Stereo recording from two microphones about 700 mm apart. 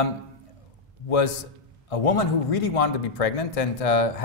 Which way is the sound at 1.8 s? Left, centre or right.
Left.